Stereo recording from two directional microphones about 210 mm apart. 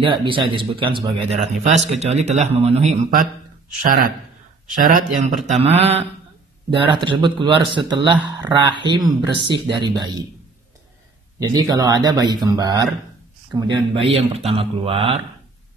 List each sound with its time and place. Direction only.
0.0 s a man's voice: 25° right (ahead or behind)
11.3 s a man's voice: 15° right (ahead or behind)